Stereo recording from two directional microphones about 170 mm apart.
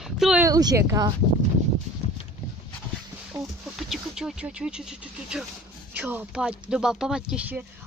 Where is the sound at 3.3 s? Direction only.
Centre (ahead or behind).